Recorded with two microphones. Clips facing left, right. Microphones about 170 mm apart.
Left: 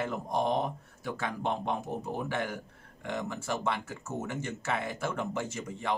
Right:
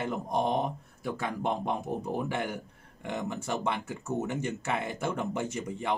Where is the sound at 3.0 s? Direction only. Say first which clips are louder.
Right 1 dB; 20° right (ahead or behind).